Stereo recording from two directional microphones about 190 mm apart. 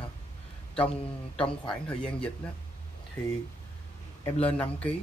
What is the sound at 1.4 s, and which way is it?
Speech, 30° left (ahead or behind).